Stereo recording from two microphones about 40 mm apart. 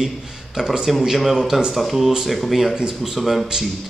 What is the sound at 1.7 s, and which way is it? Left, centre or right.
Speech, centre.